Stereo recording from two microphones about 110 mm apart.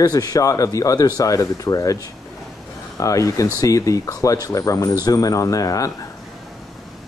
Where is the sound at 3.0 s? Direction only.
30° left (ahead or behind).